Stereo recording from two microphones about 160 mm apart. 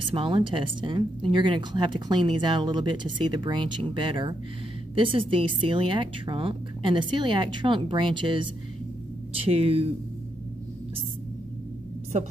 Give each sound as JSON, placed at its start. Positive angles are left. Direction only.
{"t": 0.1, "sound": "a woman's voice", "side_deg": -35}